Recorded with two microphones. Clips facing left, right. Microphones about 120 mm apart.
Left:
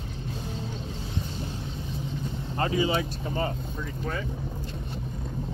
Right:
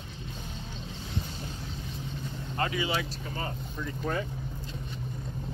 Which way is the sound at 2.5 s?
30° left (ahead or behind).